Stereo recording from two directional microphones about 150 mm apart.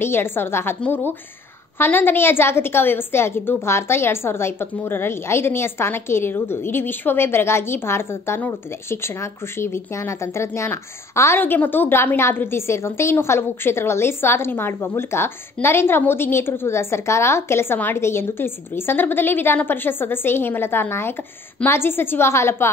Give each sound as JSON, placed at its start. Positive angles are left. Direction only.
{"t": 0.0, "sound": "a woman's voice", "side_deg": 15}